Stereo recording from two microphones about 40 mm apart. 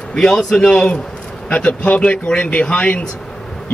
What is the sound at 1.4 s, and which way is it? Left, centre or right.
A man's voice, left.